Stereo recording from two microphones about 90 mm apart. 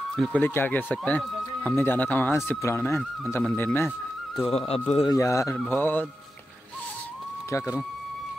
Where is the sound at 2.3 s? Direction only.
30° left (ahead or behind).